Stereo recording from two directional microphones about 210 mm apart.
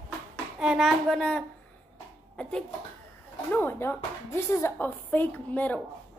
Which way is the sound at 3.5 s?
10° left (ahead or behind).